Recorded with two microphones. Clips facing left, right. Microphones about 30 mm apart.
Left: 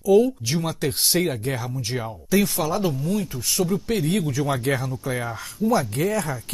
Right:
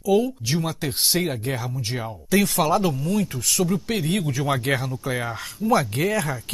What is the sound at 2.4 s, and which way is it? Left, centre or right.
Speech, right.